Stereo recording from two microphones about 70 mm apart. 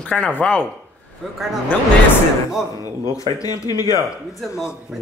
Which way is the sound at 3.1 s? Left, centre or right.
Left.